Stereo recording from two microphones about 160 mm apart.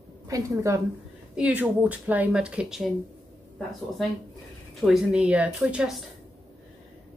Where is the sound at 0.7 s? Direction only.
20° right (ahead or behind).